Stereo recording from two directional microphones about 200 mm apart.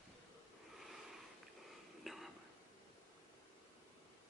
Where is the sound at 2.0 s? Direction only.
Centre (ahead or behind).